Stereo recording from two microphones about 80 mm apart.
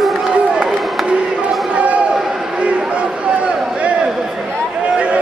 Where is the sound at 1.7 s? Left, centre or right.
Centre.